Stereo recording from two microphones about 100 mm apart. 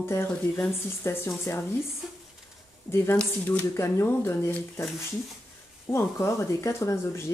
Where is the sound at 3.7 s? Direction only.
25° left (ahead or behind).